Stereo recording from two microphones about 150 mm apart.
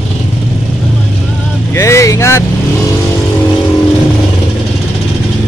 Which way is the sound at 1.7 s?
20° left (ahead or behind).